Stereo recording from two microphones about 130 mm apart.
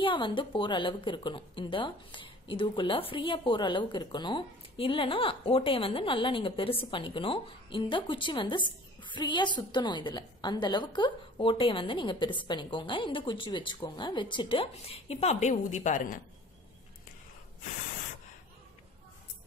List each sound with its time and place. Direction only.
0.0 s a woman's voice: 40° left (ahead or behind); by 16.2 s 70° left (ahead or behind)